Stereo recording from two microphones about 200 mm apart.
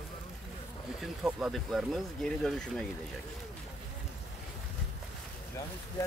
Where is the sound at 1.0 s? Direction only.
Centre (ahead or behind).